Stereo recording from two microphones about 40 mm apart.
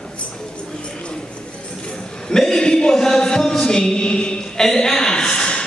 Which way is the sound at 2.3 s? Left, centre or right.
Centre.